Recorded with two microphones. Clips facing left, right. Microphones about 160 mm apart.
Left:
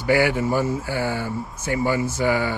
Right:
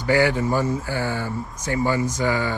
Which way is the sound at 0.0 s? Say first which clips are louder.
Even; 15° left (ahead or behind).